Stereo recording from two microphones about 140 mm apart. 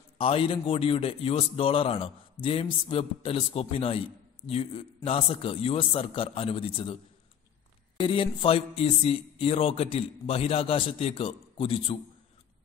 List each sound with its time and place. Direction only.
0.2 s a man's voice: 40° left (ahead or behind)
8.0 s speech: 40° left (ahead or behind)